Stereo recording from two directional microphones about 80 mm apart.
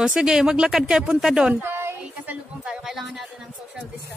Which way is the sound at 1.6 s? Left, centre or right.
Right.